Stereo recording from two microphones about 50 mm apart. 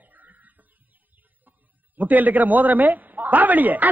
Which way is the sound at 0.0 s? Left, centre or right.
Right.